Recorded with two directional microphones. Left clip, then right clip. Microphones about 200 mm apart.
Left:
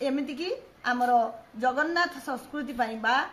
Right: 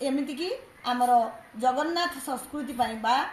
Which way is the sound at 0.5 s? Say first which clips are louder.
Left 1 dB; 20° left (ahead or behind).